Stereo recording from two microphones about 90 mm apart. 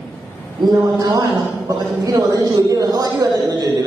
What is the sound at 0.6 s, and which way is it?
A man's voice, 45° right (ahead or behind).